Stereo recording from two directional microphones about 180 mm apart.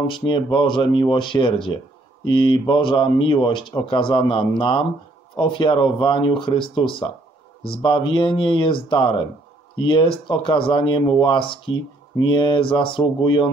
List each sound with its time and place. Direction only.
0.1 s speech: 25° left (ahead or behind)